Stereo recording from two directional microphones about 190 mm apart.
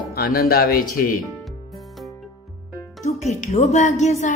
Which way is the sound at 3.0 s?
35° left (ahead or behind).